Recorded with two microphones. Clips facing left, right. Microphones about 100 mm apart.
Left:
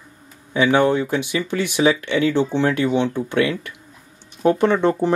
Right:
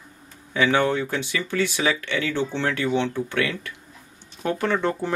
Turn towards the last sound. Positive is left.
turn(degrees=20)  # may be behind; listen again after turning